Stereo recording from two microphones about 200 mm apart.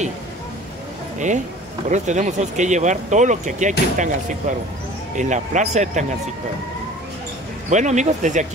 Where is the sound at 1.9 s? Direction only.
35° right (ahead or behind).